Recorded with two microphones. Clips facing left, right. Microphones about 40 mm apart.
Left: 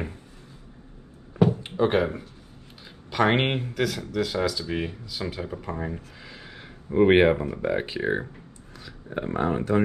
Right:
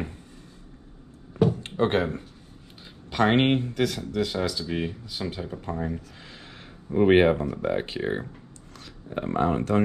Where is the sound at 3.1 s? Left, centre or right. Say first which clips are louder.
Right 1 dB; centre.